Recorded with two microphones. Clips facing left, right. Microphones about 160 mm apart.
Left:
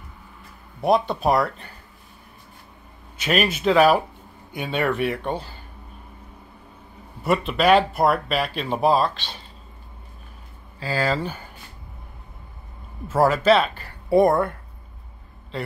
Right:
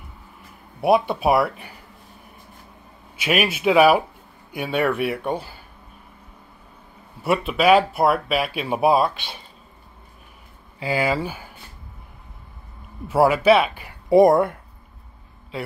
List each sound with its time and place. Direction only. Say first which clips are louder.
0.7 s speech: right 2 dB; 10° right (ahead or behind)
3.2 s speech: even; 5° right (ahead or behind)
7.2 s speech: right 1 dB; 5° right (ahead or behind)
10.8 s speech: right 2 dB; 15° right (ahead or behind)
13.1 s speech: right 2 dB; 10° right (ahead or behind)